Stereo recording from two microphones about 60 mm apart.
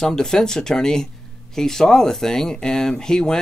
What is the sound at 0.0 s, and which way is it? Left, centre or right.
Speech, centre.